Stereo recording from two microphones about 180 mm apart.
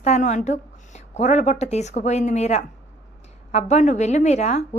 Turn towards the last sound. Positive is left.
turn(degrees=40)  # may be behind; listen again after turning